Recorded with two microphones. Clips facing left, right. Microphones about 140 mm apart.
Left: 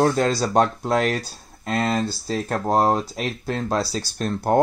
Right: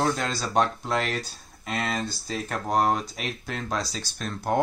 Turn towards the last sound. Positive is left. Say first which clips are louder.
# left 6 dB
turn(degrees=40)  # may be behind; listen again after turning